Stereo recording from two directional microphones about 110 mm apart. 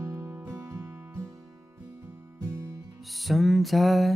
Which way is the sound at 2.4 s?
30° right (ahead or behind).